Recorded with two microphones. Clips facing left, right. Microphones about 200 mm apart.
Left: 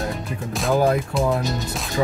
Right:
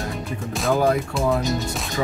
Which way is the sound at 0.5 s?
Centre (ahead or behind).